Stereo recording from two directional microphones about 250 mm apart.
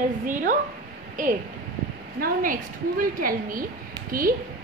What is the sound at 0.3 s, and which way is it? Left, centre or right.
A woman's voice, right.